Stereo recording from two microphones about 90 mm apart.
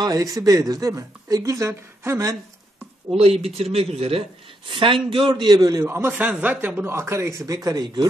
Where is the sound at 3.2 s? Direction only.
90° right; by 5.3 s 70° right (ahead or behind).